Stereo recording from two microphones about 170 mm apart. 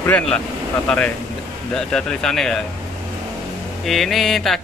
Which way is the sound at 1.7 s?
5° left (ahead or behind).